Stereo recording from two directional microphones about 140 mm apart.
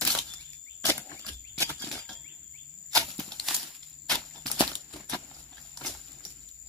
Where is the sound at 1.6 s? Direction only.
20° left (ahead or behind).